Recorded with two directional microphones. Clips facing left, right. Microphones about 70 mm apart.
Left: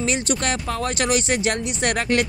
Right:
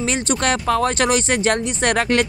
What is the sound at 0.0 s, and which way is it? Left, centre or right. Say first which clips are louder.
A woman's voice: right 3 dB; right.